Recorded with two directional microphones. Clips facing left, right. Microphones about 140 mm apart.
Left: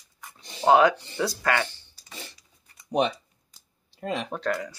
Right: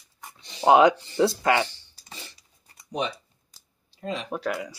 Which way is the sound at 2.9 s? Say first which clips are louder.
Left 5 dB; 60° left (ahead or behind).